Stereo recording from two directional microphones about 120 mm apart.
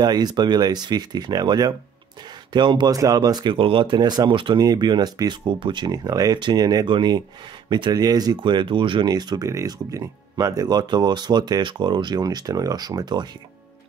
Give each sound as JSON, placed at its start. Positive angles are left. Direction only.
{"t": 0.0, "sound": "speech", "side_deg": -35}
{"t": 3.5, "sound": "speech", "side_deg": -50}